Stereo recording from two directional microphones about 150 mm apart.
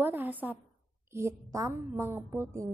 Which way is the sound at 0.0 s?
15° right (ahead or behind).